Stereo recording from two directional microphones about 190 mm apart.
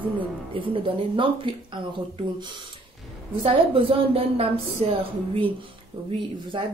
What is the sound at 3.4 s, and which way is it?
A woman's voice, 30° right (ahead or behind).